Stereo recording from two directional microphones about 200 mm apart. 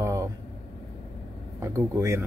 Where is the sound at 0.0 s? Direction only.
15° right (ahead or behind).